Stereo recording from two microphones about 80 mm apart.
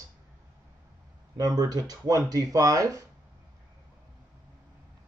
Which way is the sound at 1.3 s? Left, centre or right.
Right.